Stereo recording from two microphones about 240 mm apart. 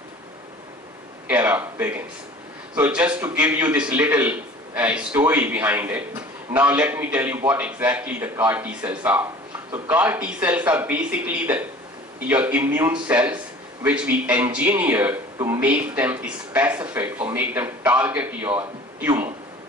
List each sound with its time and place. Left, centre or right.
1.2 s a man's voice: centre